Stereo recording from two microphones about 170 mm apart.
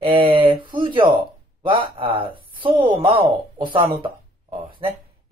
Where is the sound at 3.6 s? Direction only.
30° right (ahead or behind).